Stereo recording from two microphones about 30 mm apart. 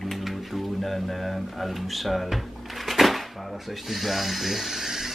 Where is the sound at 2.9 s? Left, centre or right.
Centre.